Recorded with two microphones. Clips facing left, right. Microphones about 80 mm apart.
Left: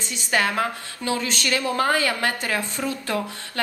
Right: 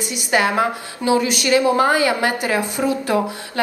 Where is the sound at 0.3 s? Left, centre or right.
Centre.